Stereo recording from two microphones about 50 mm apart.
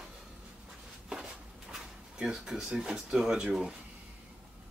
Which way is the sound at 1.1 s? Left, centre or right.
Centre.